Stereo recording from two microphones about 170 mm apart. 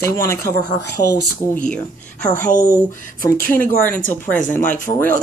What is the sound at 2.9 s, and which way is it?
Speech, 50° left (ahead or behind).